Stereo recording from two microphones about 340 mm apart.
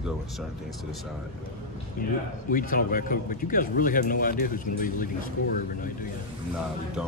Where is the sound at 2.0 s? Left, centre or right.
Left.